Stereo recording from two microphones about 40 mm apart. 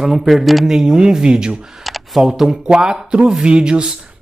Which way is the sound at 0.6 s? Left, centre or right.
Centre.